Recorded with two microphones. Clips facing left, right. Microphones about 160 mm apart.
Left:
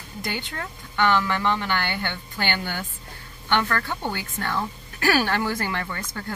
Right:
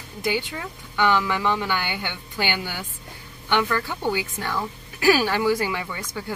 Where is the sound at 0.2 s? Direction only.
10° right (ahead or behind).